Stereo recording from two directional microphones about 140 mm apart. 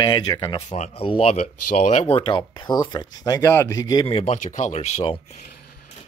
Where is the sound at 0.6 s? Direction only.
55° left (ahead or behind).